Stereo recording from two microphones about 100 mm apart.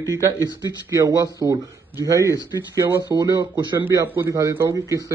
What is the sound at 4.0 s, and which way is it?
A man's voice, 30° right (ahead or behind).